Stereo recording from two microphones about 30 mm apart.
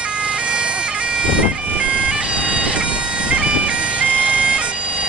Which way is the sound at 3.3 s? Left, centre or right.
Right.